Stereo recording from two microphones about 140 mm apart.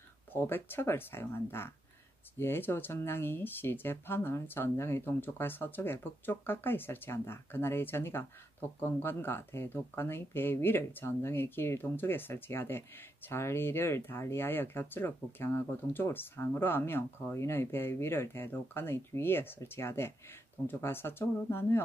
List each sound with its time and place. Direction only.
0.3 s speech: 15° left (ahead or behind)